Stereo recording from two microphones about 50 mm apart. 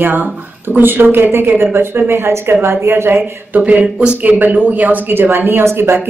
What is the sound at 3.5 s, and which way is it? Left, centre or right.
A woman's voice, right.